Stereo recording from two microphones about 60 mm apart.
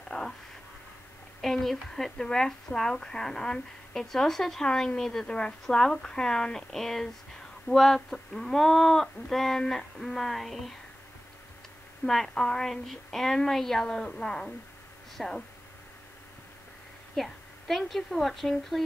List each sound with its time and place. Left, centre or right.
0.1 s a sound: left
1.4 s speech: centre
12.1 s speech: centre
17.1 s a woman's voice: centre